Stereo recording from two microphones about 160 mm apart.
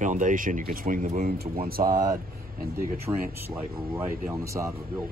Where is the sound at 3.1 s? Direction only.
20° right (ahead or behind).